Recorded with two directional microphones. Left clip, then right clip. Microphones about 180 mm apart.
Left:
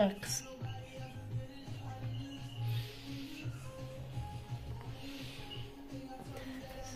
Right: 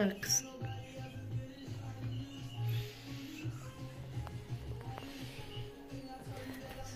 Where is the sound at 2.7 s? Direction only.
25° left (ahead or behind).